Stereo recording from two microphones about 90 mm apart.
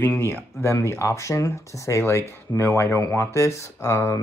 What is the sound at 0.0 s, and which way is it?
Speech, 25° left (ahead or behind).